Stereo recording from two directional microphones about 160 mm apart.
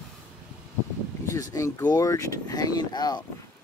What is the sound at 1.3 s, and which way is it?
Speech, 20° left (ahead or behind).